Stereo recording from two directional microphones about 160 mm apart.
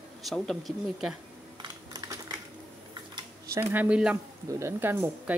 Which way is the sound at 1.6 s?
25° right (ahead or behind).